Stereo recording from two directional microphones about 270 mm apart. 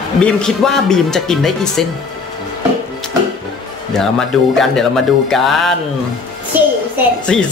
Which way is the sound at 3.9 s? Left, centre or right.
Centre.